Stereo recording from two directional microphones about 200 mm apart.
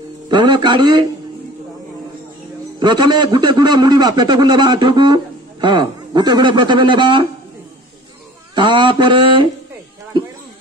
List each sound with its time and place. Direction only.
0.3 s a man's voice: 20° right (ahead or behind)
2.8 s a man's voice: 20° right (ahead or behind)
8.5 s a man's voice: 25° right (ahead or behind)